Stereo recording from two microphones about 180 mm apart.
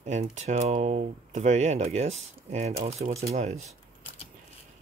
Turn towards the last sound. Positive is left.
turn(degrees=-40)  # may be behind; listen again after turning